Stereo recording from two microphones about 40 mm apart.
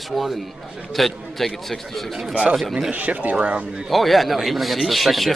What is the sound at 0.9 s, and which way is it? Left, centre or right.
Speech, centre.